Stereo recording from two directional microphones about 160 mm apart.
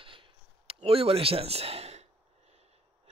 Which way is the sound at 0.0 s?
35° right (ahead or behind).